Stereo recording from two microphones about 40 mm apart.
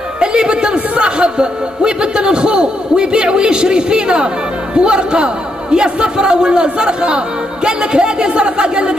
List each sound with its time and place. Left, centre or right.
0.2 s music: right
1.0 s a man's voice: right